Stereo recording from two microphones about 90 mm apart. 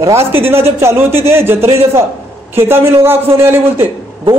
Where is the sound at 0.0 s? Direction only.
30° right (ahead or behind).